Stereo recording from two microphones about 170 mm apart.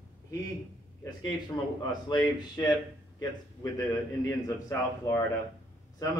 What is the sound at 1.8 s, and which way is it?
Speech, 25° left (ahead or behind).